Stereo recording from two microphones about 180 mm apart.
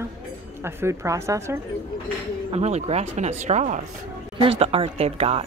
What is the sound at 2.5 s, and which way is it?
Speech, 35° right (ahead or behind).